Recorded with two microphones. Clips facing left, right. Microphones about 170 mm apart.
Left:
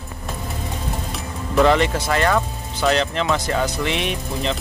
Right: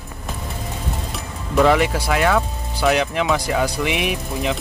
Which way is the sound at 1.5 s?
10° right (ahead or behind).